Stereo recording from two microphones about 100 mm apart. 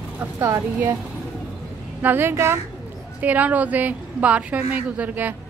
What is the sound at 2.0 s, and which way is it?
A woman's voice, 20° right (ahead or behind).